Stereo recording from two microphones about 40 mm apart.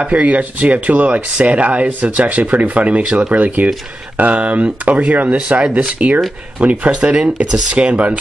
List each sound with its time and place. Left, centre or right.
0.0 s speech: right
5.6 s speech: right